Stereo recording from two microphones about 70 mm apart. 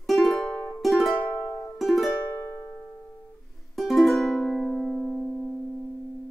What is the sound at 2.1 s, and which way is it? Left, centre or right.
Music, left.